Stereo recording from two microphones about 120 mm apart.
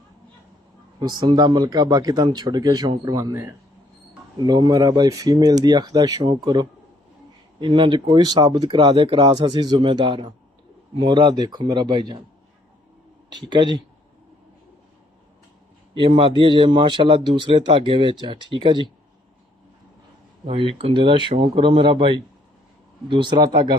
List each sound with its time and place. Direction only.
0.9 s speech: 35° right (ahead or behind)
4.4 s speech: 35° right (ahead or behind)
13.4 s speech: 40° right (ahead or behind)
15.9 s speech: 45° right (ahead or behind)
20.4 s speech: 50° right (ahead or behind)